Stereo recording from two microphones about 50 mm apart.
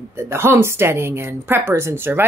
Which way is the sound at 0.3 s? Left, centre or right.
Right.